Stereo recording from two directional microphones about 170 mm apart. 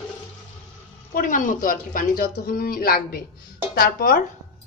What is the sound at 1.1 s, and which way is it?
Speech, 50° left (ahead or behind).